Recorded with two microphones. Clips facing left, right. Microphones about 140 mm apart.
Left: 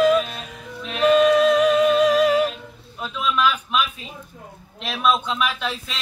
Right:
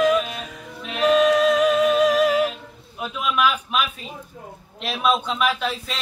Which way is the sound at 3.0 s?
10° right (ahead or behind).